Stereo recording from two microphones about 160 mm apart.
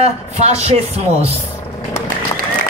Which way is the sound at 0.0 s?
40° right (ahead or behind).